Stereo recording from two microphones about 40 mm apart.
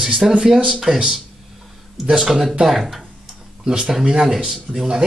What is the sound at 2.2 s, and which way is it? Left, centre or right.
Speech, centre.